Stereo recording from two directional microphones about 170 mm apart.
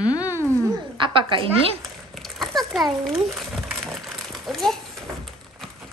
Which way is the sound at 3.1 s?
Centre (ahead or behind).